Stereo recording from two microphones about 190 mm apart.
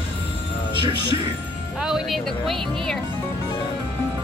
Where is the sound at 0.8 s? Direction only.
25° right (ahead or behind).